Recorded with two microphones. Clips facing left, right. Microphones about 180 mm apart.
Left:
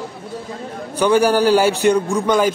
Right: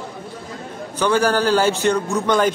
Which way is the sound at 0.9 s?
10° left (ahead or behind).